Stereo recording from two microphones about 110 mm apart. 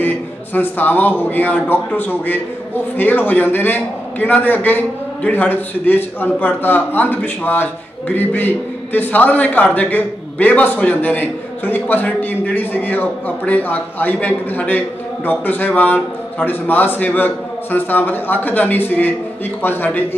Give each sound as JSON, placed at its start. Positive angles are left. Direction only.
{"t": 0.0, "sound": "a man's voice", "side_deg": 15}